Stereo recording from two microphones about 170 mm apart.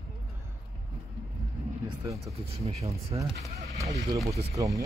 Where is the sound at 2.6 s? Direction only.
35° right (ahead or behind).